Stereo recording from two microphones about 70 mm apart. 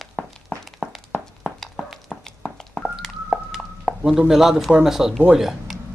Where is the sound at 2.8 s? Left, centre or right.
Centre.